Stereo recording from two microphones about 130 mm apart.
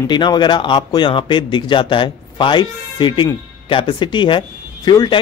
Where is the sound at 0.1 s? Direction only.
35° left (ahead or behind).